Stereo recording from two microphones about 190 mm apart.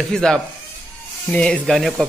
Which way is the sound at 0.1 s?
5° left (ahead or behind).